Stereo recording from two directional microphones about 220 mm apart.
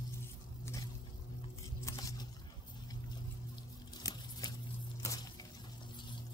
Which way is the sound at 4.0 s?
15° left (ahead or behind).